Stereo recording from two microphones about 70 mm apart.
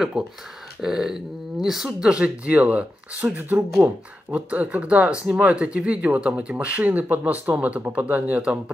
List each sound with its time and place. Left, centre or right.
0.2 s speech: centre